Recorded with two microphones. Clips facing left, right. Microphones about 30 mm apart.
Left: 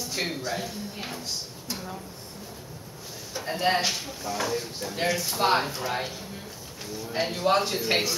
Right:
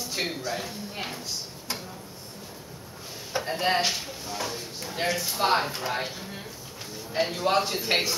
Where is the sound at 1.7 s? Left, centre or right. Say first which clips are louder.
Right 1 dB; right.